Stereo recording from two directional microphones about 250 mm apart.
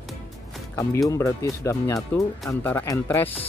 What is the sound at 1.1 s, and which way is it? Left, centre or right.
Speech, centre.